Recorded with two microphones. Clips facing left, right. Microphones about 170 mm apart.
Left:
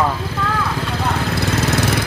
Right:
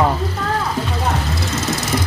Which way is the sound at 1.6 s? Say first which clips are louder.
Left 4 dB; 60° left (ahead or behind).